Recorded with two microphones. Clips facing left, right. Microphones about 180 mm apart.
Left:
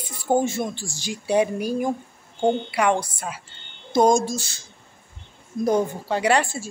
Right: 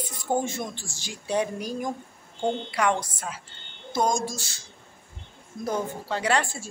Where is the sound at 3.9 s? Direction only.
20° left (ahead or behind).